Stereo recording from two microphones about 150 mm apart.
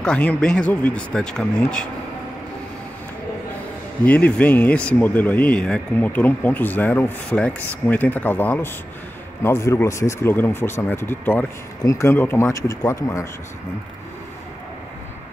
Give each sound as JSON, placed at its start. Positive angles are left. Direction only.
{"t": 0.0, "sound": "speech", "side_deg": 5}
{"t": 4.0, "sound": "speech", "side_deg": 10}